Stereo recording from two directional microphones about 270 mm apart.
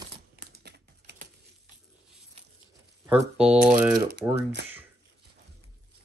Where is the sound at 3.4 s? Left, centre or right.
Centre.